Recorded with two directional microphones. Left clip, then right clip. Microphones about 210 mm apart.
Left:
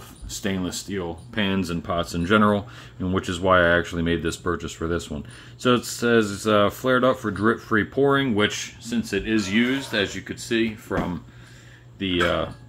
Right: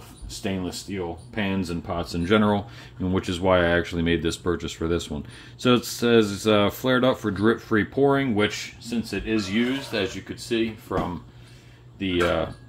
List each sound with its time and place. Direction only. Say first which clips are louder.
0.3 s speech: left 2 dB; 20° left (ahead or behind)
2.1 s speech: left 1 dB; 5° left (ahead or behind)
8.5 s speech: left 2 dB; 15° left (ahead or behind)
12.0 s speech: left 1 dB; 10° left (ahead or behind)